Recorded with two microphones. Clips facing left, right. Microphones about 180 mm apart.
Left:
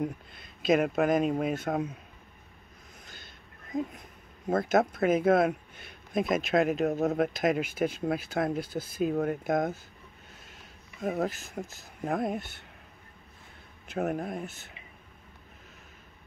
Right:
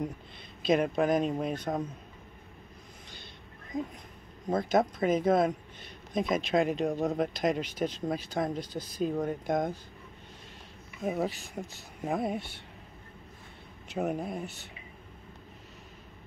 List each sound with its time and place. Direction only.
0.0 s speech: 5° left (ahead or behind)
4.5 s speech: 5° left (ahead or behind)
11.0 s speech: centre (ahead or behind)
13.8 s speech: centre (ahead or behind)